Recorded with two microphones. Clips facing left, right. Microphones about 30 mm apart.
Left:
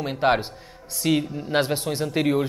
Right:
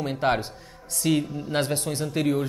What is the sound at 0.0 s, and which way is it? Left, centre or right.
Speech, centre.